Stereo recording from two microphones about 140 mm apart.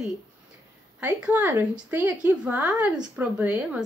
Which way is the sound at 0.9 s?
10° right (ahead or behind).